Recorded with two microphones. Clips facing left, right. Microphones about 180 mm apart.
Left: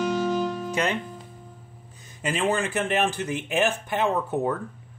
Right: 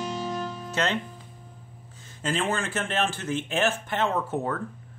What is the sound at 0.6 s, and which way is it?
Music, 10° left (ahead or behind).